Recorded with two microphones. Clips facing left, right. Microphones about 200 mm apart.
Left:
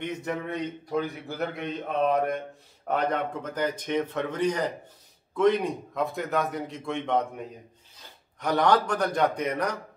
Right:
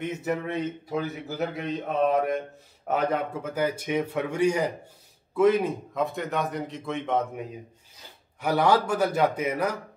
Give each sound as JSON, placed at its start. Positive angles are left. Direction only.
{"t": 0.0, "sound": "a man's voice", "side_deg": -5}